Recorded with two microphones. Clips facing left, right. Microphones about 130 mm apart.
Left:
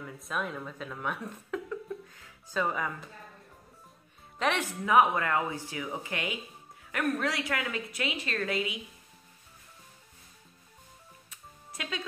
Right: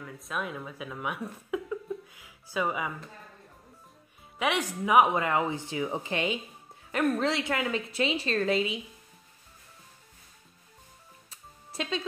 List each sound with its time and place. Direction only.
0.0 s speech: centre (ahead or behind)
4.4 s speech: 10° right (ahead or behind)
11.2 s music: 30° right (ahead or behind)